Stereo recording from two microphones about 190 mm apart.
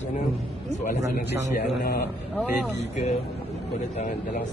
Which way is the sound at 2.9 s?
35° left (ahead or behind).